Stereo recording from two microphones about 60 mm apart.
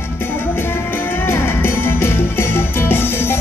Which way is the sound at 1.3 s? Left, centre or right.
Left.